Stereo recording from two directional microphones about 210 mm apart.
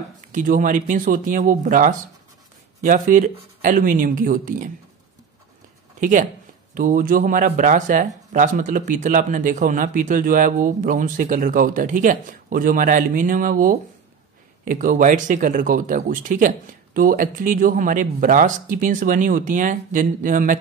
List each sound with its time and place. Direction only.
0.3 s speech: 40° right (ahead or behind)
5.9 s speech: 40° right (ahead or behind)